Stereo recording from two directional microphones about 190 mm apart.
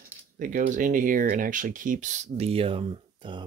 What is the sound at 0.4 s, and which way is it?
Speech, 45° right (ahead or behind).